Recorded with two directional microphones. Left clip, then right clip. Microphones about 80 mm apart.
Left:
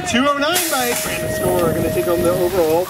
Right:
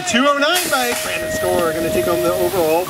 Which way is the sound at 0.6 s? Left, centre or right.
Centre.